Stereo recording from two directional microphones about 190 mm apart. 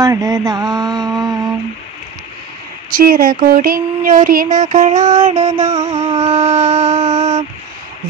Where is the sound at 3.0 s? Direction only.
50° right (ahead or behind).